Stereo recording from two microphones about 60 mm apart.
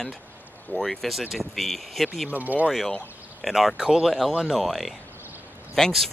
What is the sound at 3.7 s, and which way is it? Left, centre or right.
Speech, centre.